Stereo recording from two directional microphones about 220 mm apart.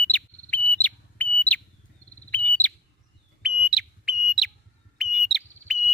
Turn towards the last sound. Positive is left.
turn(degrees=0)  # may be behind; listen again after turning